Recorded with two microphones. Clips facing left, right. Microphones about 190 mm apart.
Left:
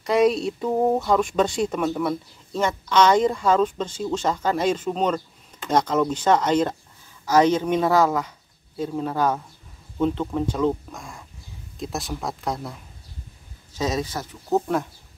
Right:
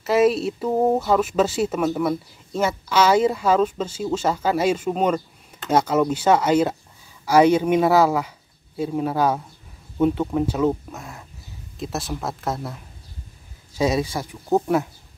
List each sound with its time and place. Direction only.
0.0 s speech: 5° right (ahead or behind)